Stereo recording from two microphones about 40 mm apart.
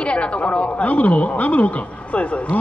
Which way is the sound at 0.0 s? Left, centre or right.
Left.